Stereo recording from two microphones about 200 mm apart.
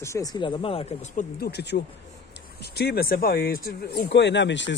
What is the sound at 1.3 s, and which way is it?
Speech, 55° left (ahead or behind).